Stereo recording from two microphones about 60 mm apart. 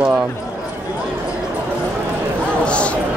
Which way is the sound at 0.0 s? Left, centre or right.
Centre.